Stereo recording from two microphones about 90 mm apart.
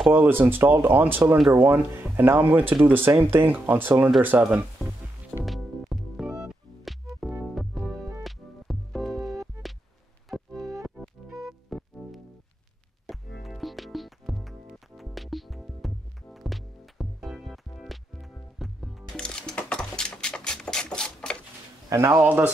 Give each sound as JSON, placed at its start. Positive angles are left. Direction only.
{"t": 0.1, "sound": "speech", "side_deg": -25}
{"t": 5.4, "sound": "music", "side_deg": 0}
{"t": 19.2, "sound": "sewing machine", "side_deg": 10}
{"t": 21.8, "sound": "a sound", "side_deg": -30}
{"t": 22.2, "sound": "speech", "side_deg": -20}